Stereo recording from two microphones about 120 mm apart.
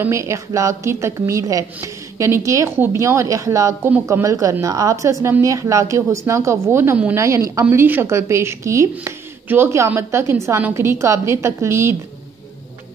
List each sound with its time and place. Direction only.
0.0 s a woman's voice: 25° right (ahead or behind)